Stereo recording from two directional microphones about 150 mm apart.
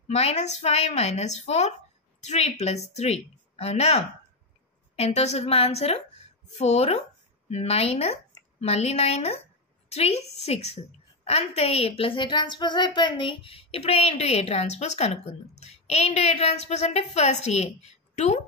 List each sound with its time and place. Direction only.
0.1 s a woman's voice: 45° left (ahead or behind)